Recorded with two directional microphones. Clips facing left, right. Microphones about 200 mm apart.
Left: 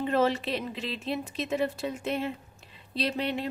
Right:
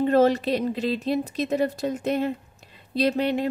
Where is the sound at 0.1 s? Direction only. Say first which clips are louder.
Right 5 dB; 40° right (ahead or behind).